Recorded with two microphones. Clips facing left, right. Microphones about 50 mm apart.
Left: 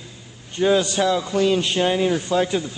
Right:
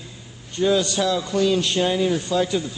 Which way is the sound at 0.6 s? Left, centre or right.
Left.